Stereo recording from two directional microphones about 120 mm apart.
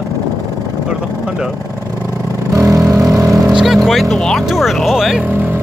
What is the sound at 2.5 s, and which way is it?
Vehicle, 25° right (ahead or behind).